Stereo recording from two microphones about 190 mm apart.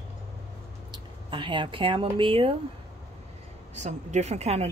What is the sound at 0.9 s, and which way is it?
Speech, 25° right (ahead or behind).